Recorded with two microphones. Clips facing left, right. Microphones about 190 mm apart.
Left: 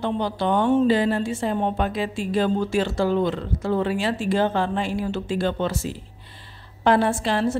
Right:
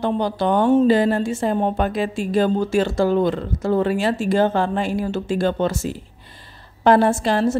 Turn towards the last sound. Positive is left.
turn(degrees=-45)  # may be behind; listen again after turning